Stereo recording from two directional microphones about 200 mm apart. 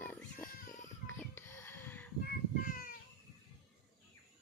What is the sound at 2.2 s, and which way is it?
Child singing, 50° left (ahead or behind).